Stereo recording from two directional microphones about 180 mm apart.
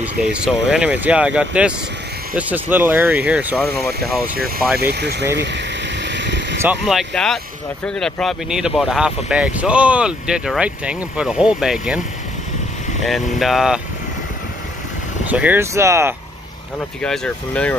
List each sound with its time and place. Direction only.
0.0 s speech: 5° right (ahead or behind)
4.7 s vehicle: 65° right (ahead or behind)
6.8 s speech: centre (ahead or behind)
13.0 s speech: centre (ahead or behind)
15.2 s speech: 10° right (ahead or behind)
17.0 s speech: 5° left (ahead or behind)